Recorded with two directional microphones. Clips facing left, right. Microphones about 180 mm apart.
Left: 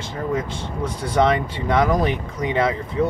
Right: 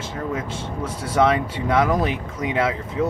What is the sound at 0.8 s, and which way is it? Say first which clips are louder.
Speech: left 1 dB; 5° right (ahead or behind).